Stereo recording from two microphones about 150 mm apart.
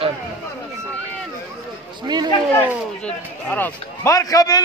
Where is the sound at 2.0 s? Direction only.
30° right (ahead or behind).